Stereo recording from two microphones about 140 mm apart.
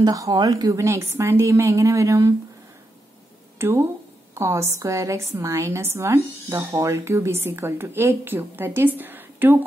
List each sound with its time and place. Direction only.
0.0 s a woman's voice: 25° right (ahead or behind)
3.5 s a woman's voice: 20° right (ahead or behind)